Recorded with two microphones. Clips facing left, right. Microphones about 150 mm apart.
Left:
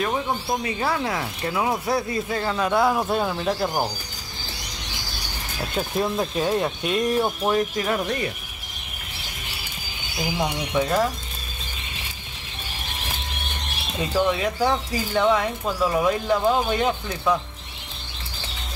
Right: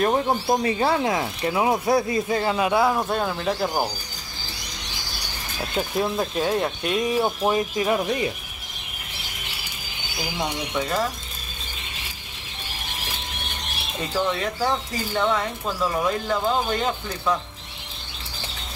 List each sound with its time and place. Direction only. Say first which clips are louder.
0.0 s speech: right 4 dB; 40° right (ahead or behind)
0.5 s speech: right 5 dB; 25° right (ahead or behind); by 3.9 s 5° left (ahead or behind)
5.8 s speech: even; centre (ahead or behind)
10.3 s speech: left 3 dB; 10° left (ahead or behind)
13.9 s speech: left 3 dB; 10° left (ahead or behind)